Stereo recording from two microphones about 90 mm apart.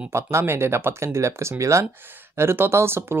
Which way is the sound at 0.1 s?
30° right (ahead or behind).